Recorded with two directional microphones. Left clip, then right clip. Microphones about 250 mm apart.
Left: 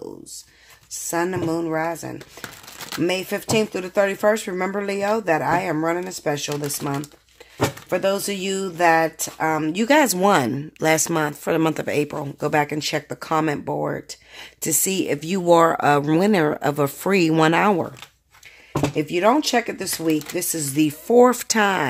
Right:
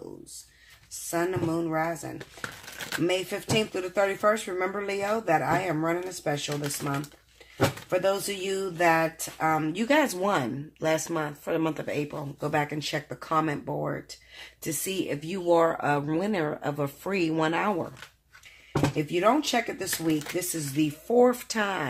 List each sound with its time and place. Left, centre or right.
1.1 s speech: left
18.9 s speech: left